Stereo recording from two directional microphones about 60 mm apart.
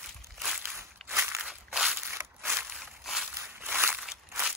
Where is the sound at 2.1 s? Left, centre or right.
Right.